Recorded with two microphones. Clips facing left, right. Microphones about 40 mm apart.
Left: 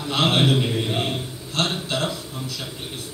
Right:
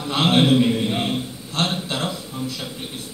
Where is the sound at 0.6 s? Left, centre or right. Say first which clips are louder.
Right 5 dB; centre.